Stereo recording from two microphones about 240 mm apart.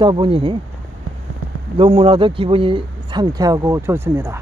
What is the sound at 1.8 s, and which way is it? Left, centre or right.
Speech, right.